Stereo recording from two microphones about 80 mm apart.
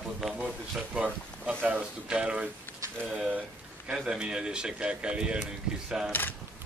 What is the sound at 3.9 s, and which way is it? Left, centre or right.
Speech, centre.